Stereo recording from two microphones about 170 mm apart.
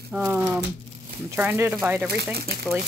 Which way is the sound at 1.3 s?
15° right (ahead or behind).